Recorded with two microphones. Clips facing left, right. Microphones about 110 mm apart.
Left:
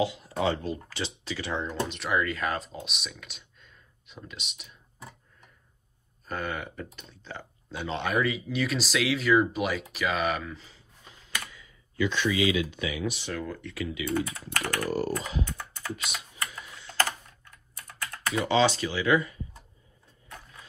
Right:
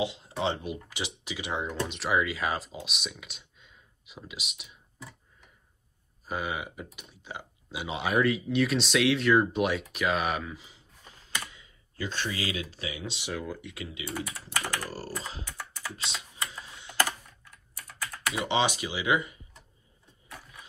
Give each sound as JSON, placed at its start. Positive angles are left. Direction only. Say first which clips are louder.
{"t": 0.0, "sound": "speech", "louder": "left 3 dB", "side_deg": -25}
{"t": 1.7, "sound": "speech", "louder": "right 2 dB", "side_deg": 0}
{"t": 6.2, "sound": "speech", "louder": "even", "side_deg": -5}
{"t": 11.3, "sound": "computer keyboard", "louder": "even", "side_deg": -25}
{"t": 12.0, "sound": "speech", "louder": "left 8 dB", "side_deg": -40}
{"t": 13.2, "sound": "speech", "louder": "left 1 dB", "side_deg": -10}
{"t": 13.7, "sound": "speech", "louder": "left 7 dB", "side_deg": -25}
{"t": 14.1, "sound": "speech", "louder": "left 3 dB", "side_deg": -10}
{"t": 15.4, "sound": "typing", "louder": "left 2 dB", "side_deg": -10}
{"t": 16.0, "sound": "speech", "louder": "left 1 dB", "side_deg": -25}
{"t": 16.5, "sound": "typing", "louder": "even", "side_deg": -20}
{"t": 17.5, "sound": "typing", "louder": "left 1 dB", "side_deg": -5}
{"t": 18.4, "sound": "speech", "louder": "left 4 dB", "side_deg": -20}
{"t": 20.2, "sound": "a sound", "louder": "even", "side_deg": -10}